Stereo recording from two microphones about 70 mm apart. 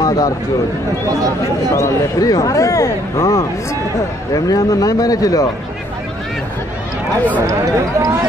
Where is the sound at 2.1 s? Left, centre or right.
Left.